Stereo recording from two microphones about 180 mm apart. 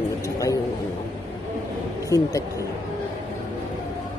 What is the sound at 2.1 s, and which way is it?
Speech, 20° left (ahead or behind).